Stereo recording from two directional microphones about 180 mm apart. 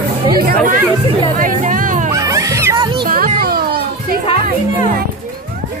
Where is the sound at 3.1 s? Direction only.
50° right (ahead or behind).